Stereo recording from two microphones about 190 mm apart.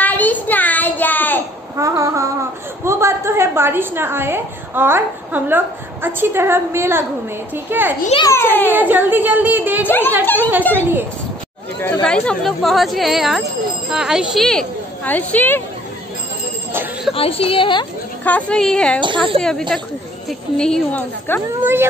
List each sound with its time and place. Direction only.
0.0 s a sound: 10° left (ahead or behind)
1.8 s a woman's voice: 15° right (ahead or behind)
8.3 s a child's voice: 10° left (ahead or behind)
8.7 s a woman's voice: 10° right (ahead or behind)
9.8 s a child's voice: 10° left (ahead or behind)
16.7 s a sound: 10° right (ahead or behind)
17.1 s speech: 30° left (ahead or behind)
18.2 s speech: 5° left (ahead or behind)
18.9 s a woman's voice: 25° right (ahead or behind)
20.2 s speech: 5° left (ahead or behind)